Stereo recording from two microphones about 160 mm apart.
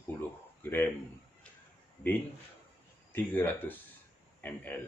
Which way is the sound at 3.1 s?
10° left (ahead or behind).